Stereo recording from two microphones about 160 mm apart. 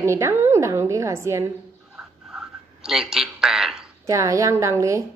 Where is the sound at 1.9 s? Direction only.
5° right (ahead or behind).